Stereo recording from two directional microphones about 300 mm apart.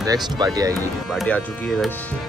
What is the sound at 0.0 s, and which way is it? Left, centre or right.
Speech, centre.